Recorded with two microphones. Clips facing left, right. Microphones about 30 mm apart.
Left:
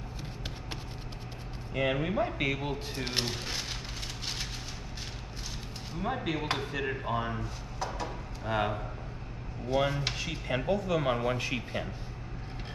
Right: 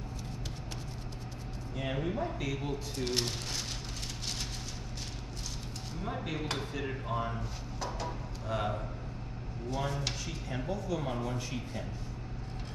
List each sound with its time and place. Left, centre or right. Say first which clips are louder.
1.7 s speech: left 5 dB; left
5.9 s speech: left 5 dB; left
8.5 s speech: left 4 dB; left